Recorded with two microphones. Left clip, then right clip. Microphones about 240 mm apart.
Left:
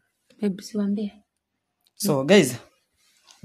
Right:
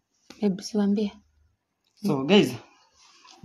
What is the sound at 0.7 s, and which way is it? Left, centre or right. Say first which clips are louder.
Speech: right 2 dB; right.